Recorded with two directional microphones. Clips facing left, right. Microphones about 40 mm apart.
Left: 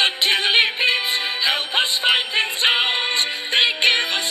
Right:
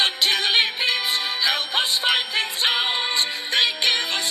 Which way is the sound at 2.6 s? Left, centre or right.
Left.